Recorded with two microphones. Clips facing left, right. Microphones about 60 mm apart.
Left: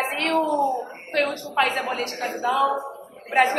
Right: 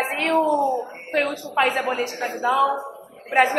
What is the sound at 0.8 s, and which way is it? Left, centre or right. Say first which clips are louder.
A woman's voice: right 1 dB; centre.